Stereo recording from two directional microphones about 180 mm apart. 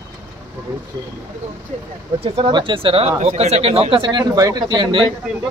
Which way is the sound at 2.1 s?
30° right (ahead or behind).